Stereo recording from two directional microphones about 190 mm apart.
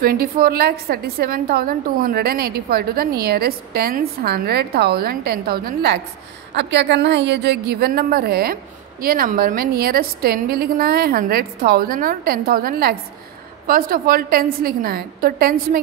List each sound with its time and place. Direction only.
0.0 s a woman's voice: 50° right (ahead or behind)
6.5 s a woman's voice: 65° right (ahead or behind); by 15.8 s 50° right (ahead or behind)